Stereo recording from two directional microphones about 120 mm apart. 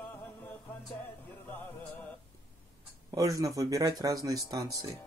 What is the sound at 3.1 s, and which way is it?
Speech, 30° right (ahead or behind).